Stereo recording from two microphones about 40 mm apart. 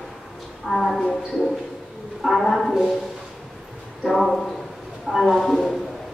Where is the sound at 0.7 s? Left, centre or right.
Centre.